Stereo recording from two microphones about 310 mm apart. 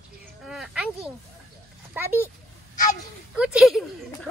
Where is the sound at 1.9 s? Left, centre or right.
Centre.